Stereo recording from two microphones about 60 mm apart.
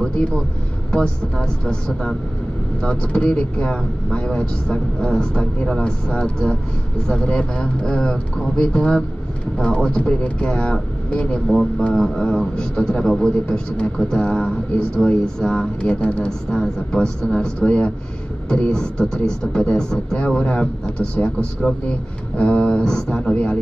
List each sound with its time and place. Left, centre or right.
0.9 s a man's voice: centre